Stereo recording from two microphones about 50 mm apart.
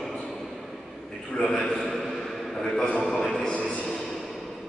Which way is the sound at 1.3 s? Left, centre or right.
Centre.